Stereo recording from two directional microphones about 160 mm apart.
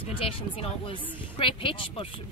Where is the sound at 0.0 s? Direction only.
35° left (ahead or behind).